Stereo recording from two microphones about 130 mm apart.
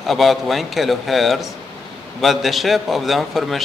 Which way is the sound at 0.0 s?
Centre (ahead or behind).